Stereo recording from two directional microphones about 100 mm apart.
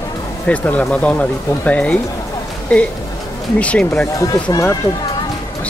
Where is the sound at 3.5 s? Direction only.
10° left (ahead or behind).